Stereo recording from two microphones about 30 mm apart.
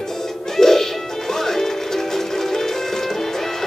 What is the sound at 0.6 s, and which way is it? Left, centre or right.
Music, centre.